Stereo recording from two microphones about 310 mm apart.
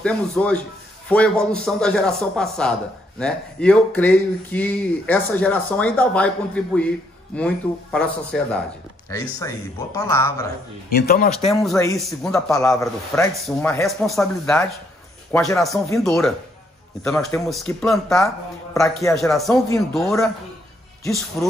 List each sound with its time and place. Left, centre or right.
0.0 s speech: centre
10.9 s speech: left
11.3 s speech: centre